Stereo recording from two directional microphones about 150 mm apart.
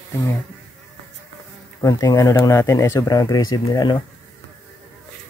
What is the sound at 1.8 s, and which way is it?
Speech, 25° left (ahead or behind).